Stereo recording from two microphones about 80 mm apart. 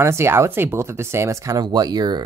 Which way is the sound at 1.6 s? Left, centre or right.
Right.